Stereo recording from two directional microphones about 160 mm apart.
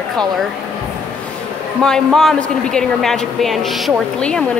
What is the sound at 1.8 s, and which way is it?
A woman's voice, 5° left (ahead or behind).